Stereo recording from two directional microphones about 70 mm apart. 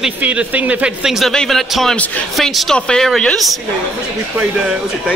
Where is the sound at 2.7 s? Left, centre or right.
Centre.